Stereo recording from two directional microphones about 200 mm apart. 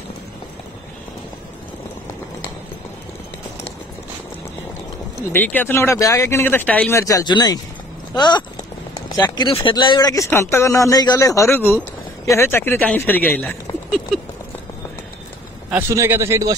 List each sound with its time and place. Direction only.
5.3 s speech: 10° left (ahead or behind)
15.7 s a man's voice: 10° right (ahead or behind)